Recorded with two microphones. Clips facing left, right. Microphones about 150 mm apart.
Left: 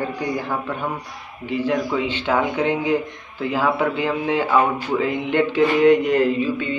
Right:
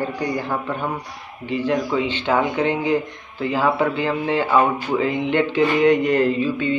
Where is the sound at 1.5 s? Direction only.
10° left (ahead or behind).